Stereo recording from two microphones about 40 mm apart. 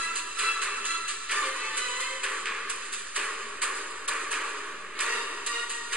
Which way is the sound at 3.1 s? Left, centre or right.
Right.